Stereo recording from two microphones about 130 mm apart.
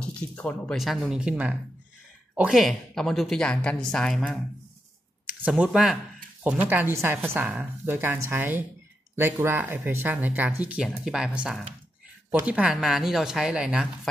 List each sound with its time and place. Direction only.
0.0 s a woman's voice: 10° left (ahead or behind)
5.5 s a woman's voice: 5° right (ahead or behind)